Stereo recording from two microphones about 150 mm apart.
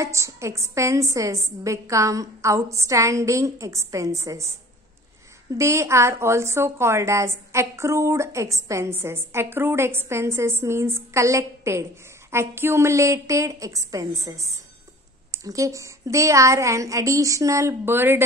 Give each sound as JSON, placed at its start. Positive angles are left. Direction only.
{"t": 0.0, "sound": "a woman's voice", "side_deg": -20}
{"t": 5.6, "sound": "a woman's voice", "side_deg": -20}